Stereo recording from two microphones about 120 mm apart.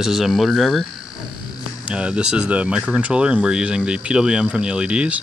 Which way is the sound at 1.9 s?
10° right (ahead or behind).